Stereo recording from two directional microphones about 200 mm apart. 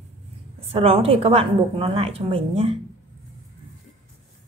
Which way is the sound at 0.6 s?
30° right (ahead or behind).